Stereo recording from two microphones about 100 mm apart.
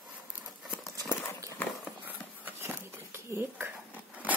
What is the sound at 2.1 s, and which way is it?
Dishes, 20° right (ahead or behind).